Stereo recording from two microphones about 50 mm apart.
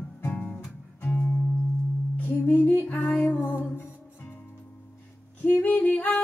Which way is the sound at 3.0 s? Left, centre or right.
Left.